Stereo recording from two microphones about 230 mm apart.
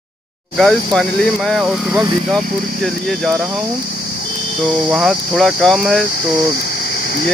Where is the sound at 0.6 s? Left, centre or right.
Centre.